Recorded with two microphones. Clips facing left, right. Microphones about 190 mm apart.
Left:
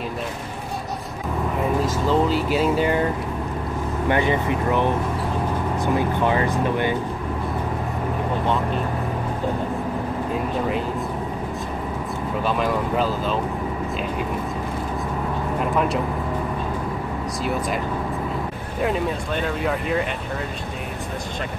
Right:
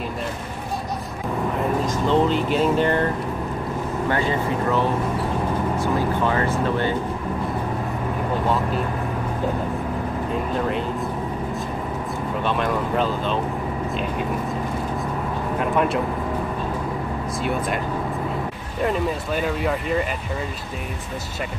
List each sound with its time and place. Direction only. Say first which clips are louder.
1.9 s speech: right 3 dB; 5° left (ahead or behind)
4.1 s speech: left 3 dB; 20° left (ahead or behind)
12.4 s speech: left 1 dB; 5° left (ahead or behind)
15.6 s speech: right 1 dB; centre (ahead or behind)
17.4 s speech: even; centre (ahead or behind)
18.8 s speech: even; centre (ahead or behind)